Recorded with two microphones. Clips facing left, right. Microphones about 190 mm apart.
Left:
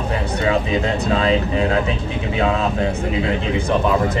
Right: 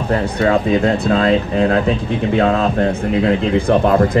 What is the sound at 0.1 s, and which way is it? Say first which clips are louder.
Speech: right 5 dB; 55° right (ahead or behind).